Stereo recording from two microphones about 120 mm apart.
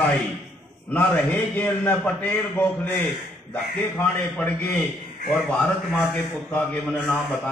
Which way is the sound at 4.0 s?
15° left (ahead or behind).